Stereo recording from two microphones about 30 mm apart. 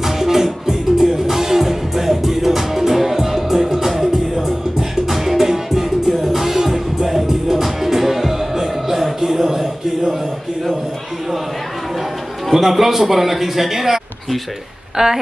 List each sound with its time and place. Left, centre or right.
0.0 s music: centre
12.5 s a man's voice: centre
15.0 s a sound: right